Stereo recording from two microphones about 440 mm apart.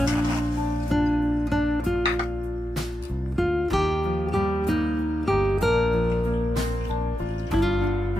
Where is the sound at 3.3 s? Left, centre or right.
Centre.